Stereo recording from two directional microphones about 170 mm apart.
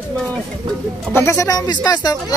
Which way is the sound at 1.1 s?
15° left (ahead or behind).